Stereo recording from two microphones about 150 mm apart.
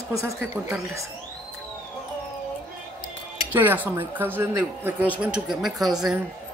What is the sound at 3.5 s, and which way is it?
Speech, 15° right (ahead or behind).